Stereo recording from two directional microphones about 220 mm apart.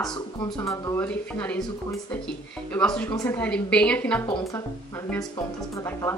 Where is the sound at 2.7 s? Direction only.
5° left (ahead or behind).